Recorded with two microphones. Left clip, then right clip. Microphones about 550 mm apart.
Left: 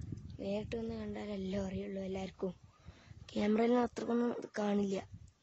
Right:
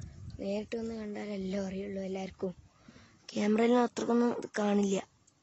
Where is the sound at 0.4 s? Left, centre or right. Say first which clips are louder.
Right 3 dB; left.